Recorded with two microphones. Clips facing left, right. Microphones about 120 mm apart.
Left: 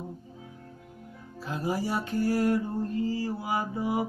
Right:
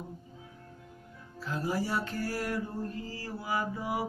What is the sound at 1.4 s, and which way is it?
Music, 15° left (ahead or behind).